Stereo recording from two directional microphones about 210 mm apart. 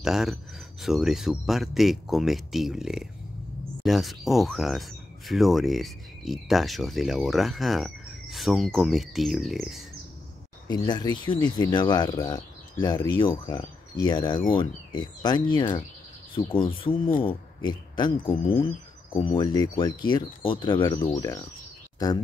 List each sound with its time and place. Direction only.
0.0 s speech: centre (ahead or behind)
10.7 s speech: 20° left (ahead or behind)
21.9 s a sound: 15° left (ahead or behind)